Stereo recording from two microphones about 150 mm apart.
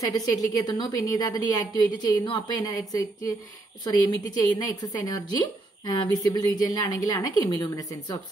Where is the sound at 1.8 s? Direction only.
30° left (ahead or behind).